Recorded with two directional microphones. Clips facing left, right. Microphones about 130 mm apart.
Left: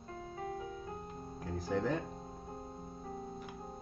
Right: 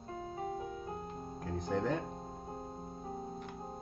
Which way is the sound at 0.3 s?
25° right (ahead or behind).